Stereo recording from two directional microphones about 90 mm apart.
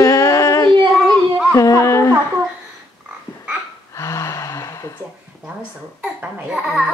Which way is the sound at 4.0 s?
40° left (ahead or behind).